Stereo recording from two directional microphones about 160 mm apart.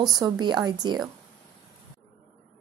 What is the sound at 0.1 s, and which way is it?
Speech, 25° right (ahead or behind).